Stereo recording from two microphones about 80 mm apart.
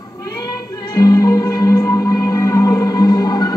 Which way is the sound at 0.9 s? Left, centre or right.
Left.